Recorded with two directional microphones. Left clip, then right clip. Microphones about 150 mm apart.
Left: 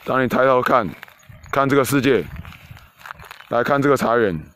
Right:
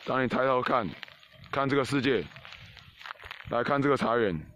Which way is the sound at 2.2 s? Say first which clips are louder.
Left 6 dB; 80° left.